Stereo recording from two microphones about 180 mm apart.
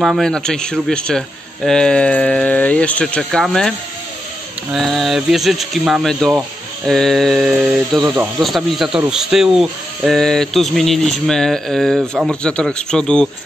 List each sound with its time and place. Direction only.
0.0 s speech: centre (ahead or behind)
4.7 s speech: centre (ahead or behind)
8.0 s speech: 20° right (ahead or behind)
8.4 s speech: centre (ahead or behind)